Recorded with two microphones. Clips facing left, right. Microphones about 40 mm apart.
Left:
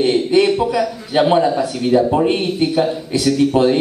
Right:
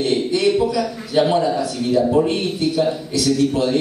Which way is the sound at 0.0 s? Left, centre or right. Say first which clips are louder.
Left 5 dB; left.